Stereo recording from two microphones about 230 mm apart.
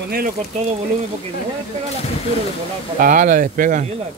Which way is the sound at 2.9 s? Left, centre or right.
Right.